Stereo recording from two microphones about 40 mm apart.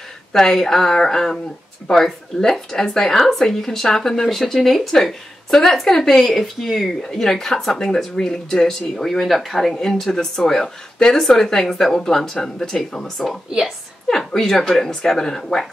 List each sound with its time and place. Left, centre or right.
0.3 s speech: centre